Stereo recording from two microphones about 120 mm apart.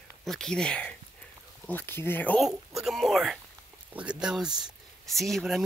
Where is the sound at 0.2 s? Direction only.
5° left (ahead or behind).